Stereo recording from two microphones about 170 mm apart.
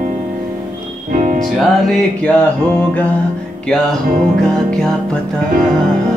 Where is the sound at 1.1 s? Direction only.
50° right (ahead or behind).